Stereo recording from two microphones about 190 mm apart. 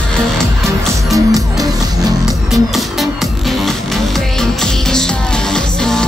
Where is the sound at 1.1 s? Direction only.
20° right (ahead or behind).